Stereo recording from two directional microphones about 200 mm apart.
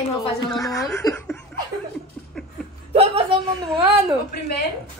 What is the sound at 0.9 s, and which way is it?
Speech, 15° left (ahead or behind).